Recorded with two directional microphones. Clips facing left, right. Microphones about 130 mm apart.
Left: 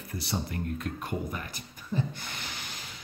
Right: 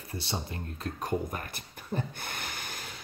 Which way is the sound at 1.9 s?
55° right (ahead or behind).